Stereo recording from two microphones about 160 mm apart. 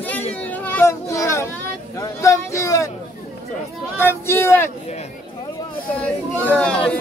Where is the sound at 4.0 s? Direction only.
15° left (ahead or behind).